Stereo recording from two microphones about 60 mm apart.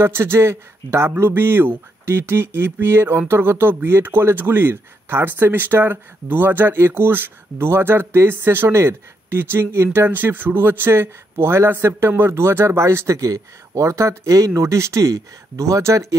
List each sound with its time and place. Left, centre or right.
0.0 s speech: right